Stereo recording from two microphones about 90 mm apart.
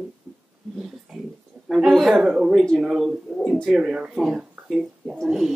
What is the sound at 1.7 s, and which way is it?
Speech, centre (ahead or behind).